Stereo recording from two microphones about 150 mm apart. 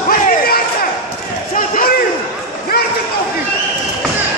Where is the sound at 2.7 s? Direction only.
90° left.